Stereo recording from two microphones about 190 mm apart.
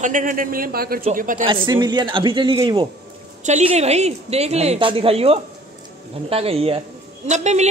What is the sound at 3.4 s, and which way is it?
A woman's voice, 35° right (ahead or behind).